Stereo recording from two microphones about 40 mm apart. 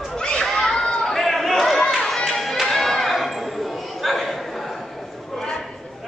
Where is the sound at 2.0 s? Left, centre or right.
Centre.